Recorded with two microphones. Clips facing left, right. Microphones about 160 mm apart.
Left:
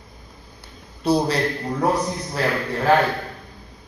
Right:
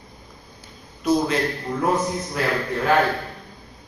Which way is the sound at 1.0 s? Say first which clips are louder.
Left 1 dB; 35° left (ahead or behind).